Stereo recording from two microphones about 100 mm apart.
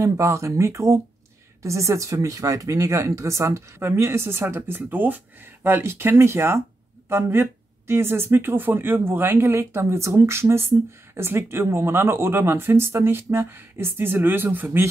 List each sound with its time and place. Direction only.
0.0 s speech: 30° right (ahead or behind)